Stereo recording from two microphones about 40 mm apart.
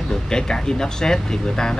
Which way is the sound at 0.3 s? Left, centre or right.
Centre.